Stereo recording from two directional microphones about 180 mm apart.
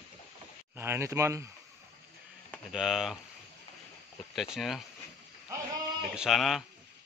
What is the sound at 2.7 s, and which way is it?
Speech, centre (ahead or behind).